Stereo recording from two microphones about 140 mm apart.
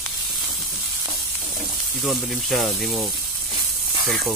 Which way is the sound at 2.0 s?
Centre (ahead or behind).